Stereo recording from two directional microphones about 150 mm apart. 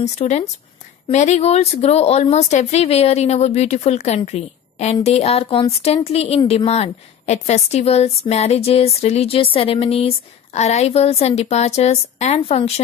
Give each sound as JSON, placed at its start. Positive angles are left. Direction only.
{"t": 0.0, "sound": "a woman's voice", "side_deg": 50}